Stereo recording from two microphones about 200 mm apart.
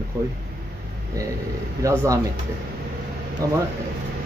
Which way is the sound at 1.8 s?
15° right (ahead or behind).